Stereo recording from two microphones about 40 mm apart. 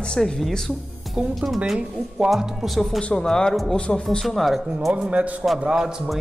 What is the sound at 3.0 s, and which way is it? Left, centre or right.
Speech, left.